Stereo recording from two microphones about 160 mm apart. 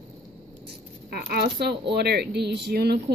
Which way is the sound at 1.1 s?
70° right (ahead or behind).